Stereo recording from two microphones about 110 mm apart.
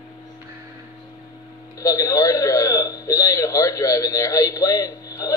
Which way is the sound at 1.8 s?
30° left (ahead or behind).